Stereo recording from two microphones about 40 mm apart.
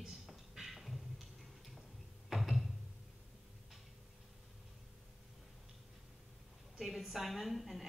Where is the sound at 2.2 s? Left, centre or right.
Centre.